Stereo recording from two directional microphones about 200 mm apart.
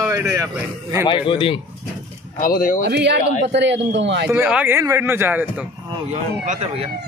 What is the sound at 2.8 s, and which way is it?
Speech, 60° right (ahead or behind).